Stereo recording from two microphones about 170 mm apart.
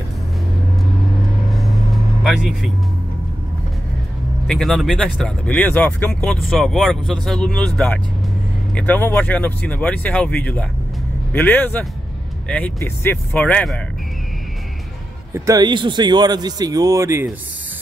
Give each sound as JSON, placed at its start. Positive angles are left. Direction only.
{"t": 1.5, "sound": "vehicle", "side_deg": 0}
{"t": 4.5, "sound": "speech", "side_deg": 0}
{"t": 15.3, "sound": "speech", "side_deg": -20}